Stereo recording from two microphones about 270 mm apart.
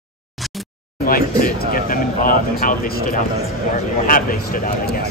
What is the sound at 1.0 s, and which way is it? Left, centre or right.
Speech, left.